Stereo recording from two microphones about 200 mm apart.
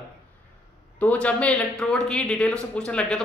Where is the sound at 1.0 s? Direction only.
5° left (ahead or behind).